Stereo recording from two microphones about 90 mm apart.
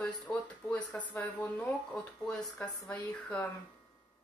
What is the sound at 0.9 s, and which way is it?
Speech, 15° left (ahead or behind).